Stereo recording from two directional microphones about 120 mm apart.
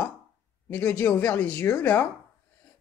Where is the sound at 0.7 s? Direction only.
15° left (ahead or behind).